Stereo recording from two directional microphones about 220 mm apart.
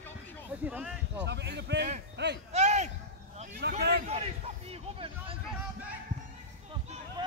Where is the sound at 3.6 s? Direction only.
50° right (ahead or behind).